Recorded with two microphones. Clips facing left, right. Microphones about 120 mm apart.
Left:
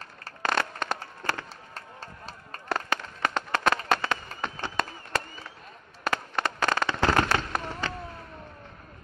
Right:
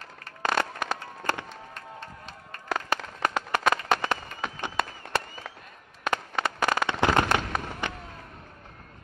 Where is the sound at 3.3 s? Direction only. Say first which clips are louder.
Even; 10° right (ahead or behind).